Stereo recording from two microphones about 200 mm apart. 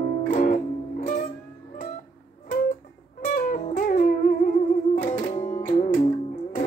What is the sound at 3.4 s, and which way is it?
Music, 40° left (ahead or behind).